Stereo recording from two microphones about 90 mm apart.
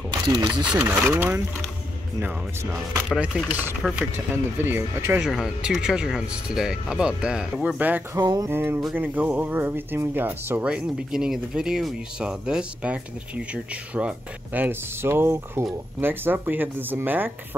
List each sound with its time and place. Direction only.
0.1 s speech: 55° right (ahead or behind)
0.7 s speech: 15° right (ahead or behind)
2.1 s speech: 30° right (ahead or behind)
3.3 s speech: 15° right (ahead or behind)
4.3 s speech: 25° right (ahead or behind)
5.2 s speech: 5° right (ahead or behind)
8.2 s music: 45° right (ahead or behind)
8.5 s speech: 25° right (ahead or behind)
10.6 s speech: 10° right (ahead or behind)